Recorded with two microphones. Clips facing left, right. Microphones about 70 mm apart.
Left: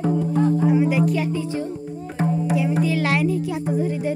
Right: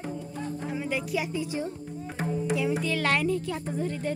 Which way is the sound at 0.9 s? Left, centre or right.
Centre.